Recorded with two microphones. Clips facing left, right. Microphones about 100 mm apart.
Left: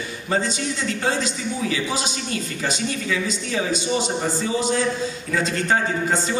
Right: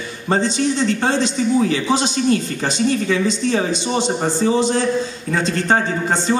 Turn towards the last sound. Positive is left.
turn(degrees=-35)  # may be behind; listen again after turning